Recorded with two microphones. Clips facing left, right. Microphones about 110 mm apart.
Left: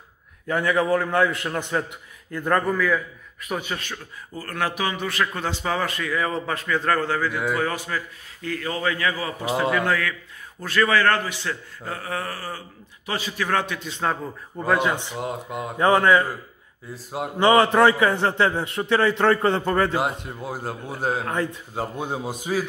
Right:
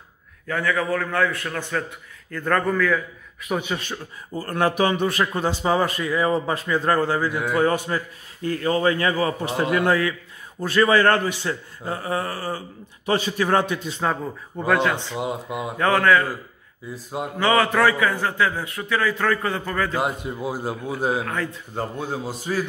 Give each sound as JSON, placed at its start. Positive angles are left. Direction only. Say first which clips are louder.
{"t": 0.5, "sound": "a man's voice", "louder": "left 2 dB", "side_deg": 20}
{"t": 3.4, "sound": "speech", "louder": "right 3 dB", "side_deg": -5}
{"t": 3.8, "sound": "speech", "louder": "right 3 dB", "side_deg": -25}
{"t": 5.0, "sound": "speech", "louder": "right 4 dB", "side_deg": -20}
{"t": 7.8, "sound": "a man's voice", "louder": "right 3 dB", "side_deg": -30}
{"t": 14.0, "sound": "a man's voice", "louder": "right 1 dB", "side_deg": 0}
{"t": 14.8, "sound": "a man's voice", "louder": "right 1 dB", "side_deg": 15}
{"t": 15.1, "sound": "speech", "louder": "right 2 dB", "side_deg": -5}
{"t": 15.8, "sound": "a man's voice", "louder": "left 1 dB", "side_deg": 20}
{"t": 16.9, "sound": "a man's voice", "louder": "even", "side_deg": 0}
{"t": 17.4, "sound": "a man's voice", "louder": "left 3 dB", "side_deg": 20}
{"t": 19.9, "sound": "a man's voice", "louder": "even", "side_deg": 0}
{"t": 21.7, "sound": "a man's voice", "louder": "right 1 dB", "side_deg": 15}